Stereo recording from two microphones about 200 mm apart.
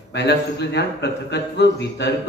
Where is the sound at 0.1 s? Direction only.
60° left (ahead or behind).